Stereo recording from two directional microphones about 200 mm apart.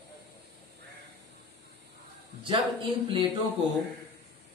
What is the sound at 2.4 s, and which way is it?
Speech, 25° right (ahead or behind).